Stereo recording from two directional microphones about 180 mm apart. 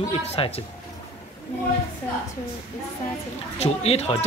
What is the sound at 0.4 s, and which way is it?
Speech, 30° left (ahead or behind).